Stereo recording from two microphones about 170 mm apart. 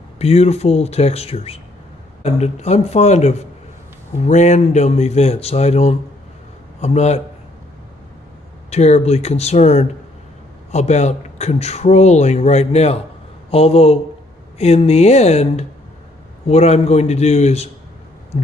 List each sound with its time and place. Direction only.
0.2 s a man's voice: 35° left (ahead or behind)
8.6 s a man's voice: 40° left (ahead or behind)